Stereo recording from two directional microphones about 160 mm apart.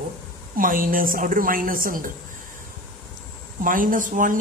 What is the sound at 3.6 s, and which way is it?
Speech, 55° right (ahead or behind).